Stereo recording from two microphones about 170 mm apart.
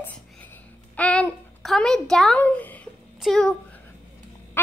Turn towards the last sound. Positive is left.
turn(degrees=0)  # may be behind; listen again after turning